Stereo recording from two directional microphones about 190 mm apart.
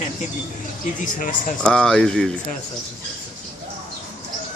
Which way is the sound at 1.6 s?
5° left (ahead or behind).